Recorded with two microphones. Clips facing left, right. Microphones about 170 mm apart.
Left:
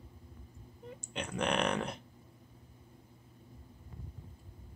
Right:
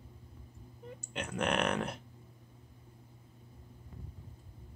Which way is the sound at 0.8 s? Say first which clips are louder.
Even; 5° right (ahead or behind).